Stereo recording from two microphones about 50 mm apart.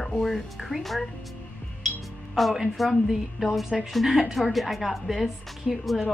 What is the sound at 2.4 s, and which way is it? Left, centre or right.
A woman's voice, centre.